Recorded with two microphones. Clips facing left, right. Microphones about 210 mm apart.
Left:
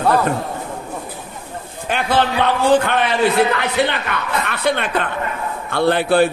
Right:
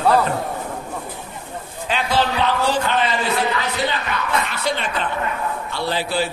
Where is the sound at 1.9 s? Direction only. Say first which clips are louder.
Left 3 dB; 50° left (ahead or behind).